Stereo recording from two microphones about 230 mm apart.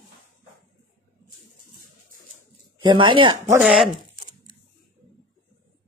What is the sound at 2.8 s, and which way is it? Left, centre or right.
Speech, right.